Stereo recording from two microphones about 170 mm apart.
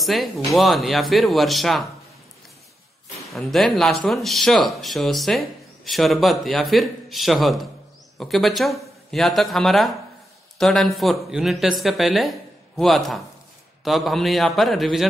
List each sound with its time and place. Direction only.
0.0 s speech: centre (ahead or behind)
3.3 s speech: centre (ahead or behind)